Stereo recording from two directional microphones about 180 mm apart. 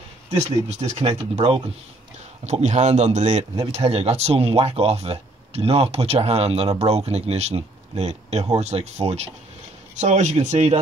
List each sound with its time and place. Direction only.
0.3 s speech: 35° right (ahead or behind)